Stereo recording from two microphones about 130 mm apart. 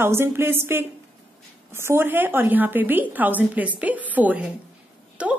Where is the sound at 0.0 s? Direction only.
20° right (ahead or behind).